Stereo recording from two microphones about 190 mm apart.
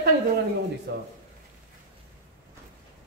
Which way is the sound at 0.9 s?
55° right (ahead or behind).